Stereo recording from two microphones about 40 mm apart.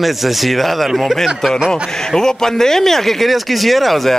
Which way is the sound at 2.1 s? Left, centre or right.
Centre.